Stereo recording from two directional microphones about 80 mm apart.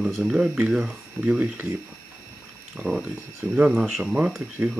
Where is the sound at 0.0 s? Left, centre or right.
Centre.